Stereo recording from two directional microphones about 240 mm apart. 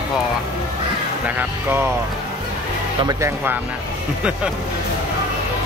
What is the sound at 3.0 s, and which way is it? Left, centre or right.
Speech, centre.